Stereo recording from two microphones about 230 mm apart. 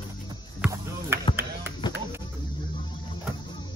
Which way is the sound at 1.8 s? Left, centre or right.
Centre.